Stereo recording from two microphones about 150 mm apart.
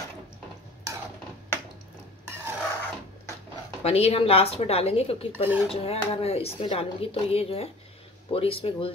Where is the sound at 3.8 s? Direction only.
45° left (ahead or behind).